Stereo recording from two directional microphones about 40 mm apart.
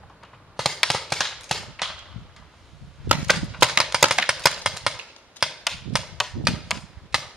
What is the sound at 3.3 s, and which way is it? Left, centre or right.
Typewriter, centre.